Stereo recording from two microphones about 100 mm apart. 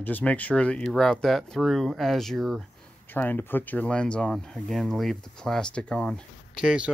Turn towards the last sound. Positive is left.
turn(degrees=-5)  # may be behind; listen again after turning